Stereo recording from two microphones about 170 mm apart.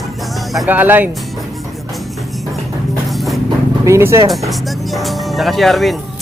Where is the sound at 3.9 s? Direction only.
15° right (ahead or behind).